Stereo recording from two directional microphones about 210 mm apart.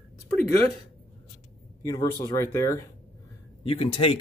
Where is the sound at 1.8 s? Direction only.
15° left (ahead or behind).